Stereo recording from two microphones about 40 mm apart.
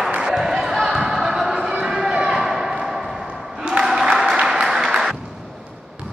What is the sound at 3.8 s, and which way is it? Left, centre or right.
Applause, centre.